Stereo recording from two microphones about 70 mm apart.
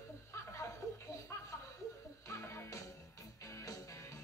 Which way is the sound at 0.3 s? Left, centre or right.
Left.